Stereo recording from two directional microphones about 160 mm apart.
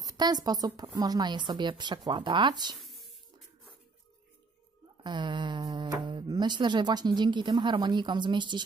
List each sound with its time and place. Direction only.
0.0 s a woman's voice: 25° right (ahead or behind)
2.7 s a sound: centre (ahead or behind)
5.0 s speech: 30° right (ahead or behind)